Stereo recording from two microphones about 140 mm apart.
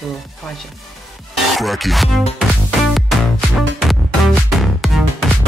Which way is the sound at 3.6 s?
Centre (ahead or behind).